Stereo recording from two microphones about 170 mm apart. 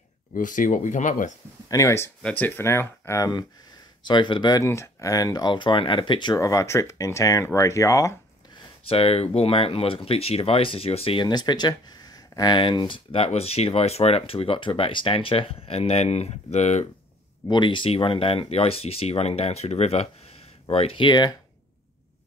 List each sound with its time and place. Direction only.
0.3 s speech: 50° left (ahead or behind)
1.7 s speech: 15° left (ahead or behind)
8.8 s speech: 35° left (ahead or behind)
17.5 s speech: 30° left (ahead or behind)